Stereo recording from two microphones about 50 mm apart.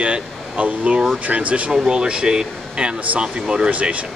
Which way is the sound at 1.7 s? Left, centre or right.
Centre.